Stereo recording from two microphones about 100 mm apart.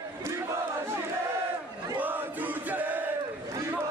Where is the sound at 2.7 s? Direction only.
15° right (ahead or behind).